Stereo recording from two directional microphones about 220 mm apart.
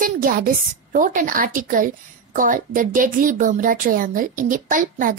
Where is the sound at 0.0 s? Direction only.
40° right (ahead or behind).